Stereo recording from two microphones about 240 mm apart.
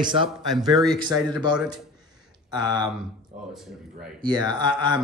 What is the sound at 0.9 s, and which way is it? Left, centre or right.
Mantra, centre.